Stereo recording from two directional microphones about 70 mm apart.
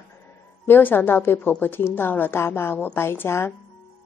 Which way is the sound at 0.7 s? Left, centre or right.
Left.